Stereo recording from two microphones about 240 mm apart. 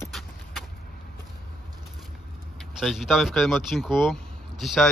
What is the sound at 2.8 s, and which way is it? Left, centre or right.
Speech, centre.